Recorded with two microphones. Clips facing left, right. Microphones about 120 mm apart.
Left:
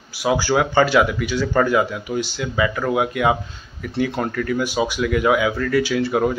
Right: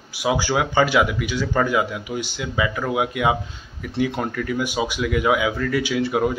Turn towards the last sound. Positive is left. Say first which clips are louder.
# left 2 dB
turn(degrees=-10)  # may be behind; listen again after turning